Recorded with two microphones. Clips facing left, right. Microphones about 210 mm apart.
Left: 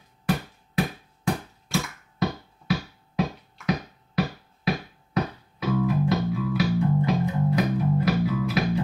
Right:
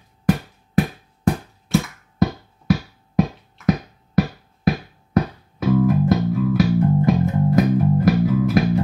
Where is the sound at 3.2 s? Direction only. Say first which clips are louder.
Right 7 dB; 50° right (ahead or behind).